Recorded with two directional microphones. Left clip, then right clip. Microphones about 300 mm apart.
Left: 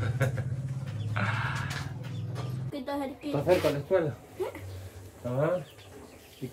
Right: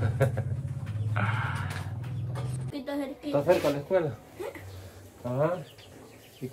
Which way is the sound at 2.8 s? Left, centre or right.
Centre.